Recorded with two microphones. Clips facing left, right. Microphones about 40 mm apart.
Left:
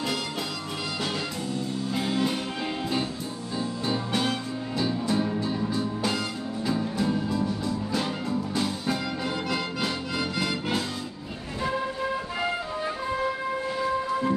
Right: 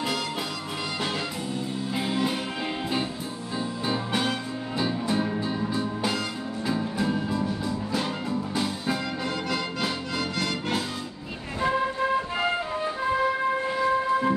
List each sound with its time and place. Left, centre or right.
2.0 s music: centre
3.8 s music: centre
11.6 s music: right